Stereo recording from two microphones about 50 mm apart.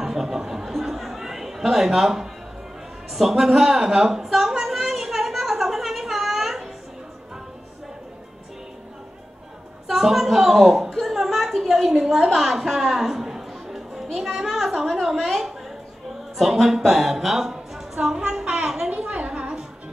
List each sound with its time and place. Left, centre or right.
0.0 s a sound: centre
9.8 s a woman's voice: centre
12.4 s music: centre
14.1 s a woman's voice: centre
18.1 s music: centre